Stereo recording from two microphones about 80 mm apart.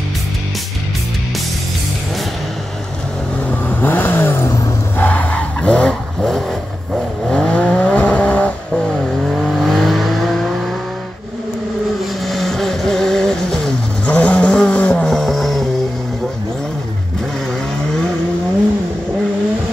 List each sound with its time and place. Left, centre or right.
3.6 s vehicle: left
5.0 s skidding: centre
7.2 s vehicle: centre
9.3 s vehicle: centre
12.3 s music: centre
14.0 s vehicle: centre
15.1 s vehicle: centre